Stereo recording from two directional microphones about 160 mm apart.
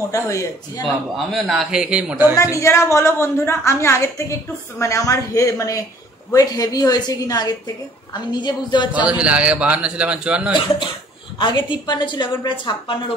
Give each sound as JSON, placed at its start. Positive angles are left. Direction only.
{"t": 0.1, "sound": "a woman's voice", "side_deg": 20}
{"t": 1.1, "sound": "a man's voice", "side_deg": 0}
{"t": 2.3, "sound": "a woman's voice", "side_deg": 20}
{"t": 8.9, "sound": "a man's voice", "side_deg": -5}
{"t": 11.3, "sound": "a woman's voice", "side_deg": 30}